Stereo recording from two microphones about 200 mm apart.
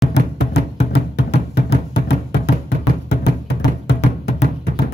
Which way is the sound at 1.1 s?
60° left (ahead or behind).